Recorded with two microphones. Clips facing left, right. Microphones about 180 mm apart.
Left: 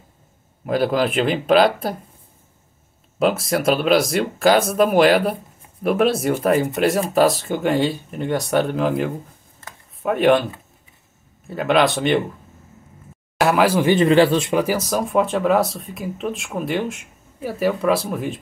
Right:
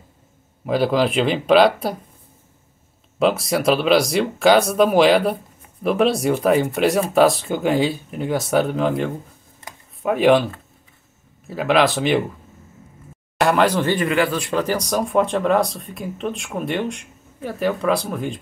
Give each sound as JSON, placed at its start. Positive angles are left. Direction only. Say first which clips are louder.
{"t": 0.7, "sound": "speech", "louder": "right 1 dB", "side_deg": 0}
{"t": 3.2, "sound": "speech", "louder": "even", "side_deg": 0}
{"t": 11.4, "sound": "speech", "louder": "even", "side_deg": 0}
{"t": 13.4, "sound": "speech", "louder": "left 1 dB", "side_deg": 5}
{"t": 13.9, "sound": "speech", "louder": "left 5 dB", "side_deg": 30}
{"t": 14.5, "sound": "speech", "louder": "left 1 dB", "side_deg": 10}